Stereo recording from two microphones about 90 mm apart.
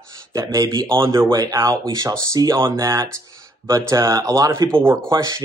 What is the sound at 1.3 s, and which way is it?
Speech, 40° right (ahead or behind).